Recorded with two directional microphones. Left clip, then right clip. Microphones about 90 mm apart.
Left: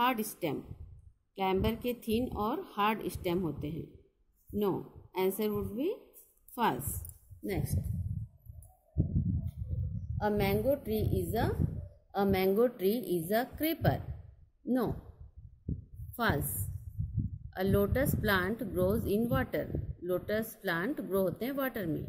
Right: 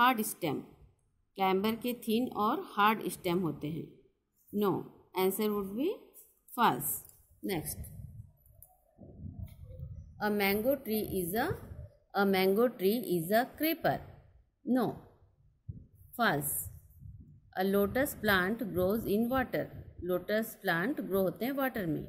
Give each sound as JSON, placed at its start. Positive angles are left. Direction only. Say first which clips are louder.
{"t": 0.0, "sound": "a woman's voice", "louder": "right 3 dB", "side_deg": 0}
{"t": 10.1, "sound": "a woman's voice", "louder": "even", "side_deg": -30}
{"t": 12.1, "sound": "a woman's voice", "louder": "right 1 dB", "side_deg": -15}
{"t": 16.2, "sound": "a woman's voice", "louder": "right 2 dB", "side_deg": 0}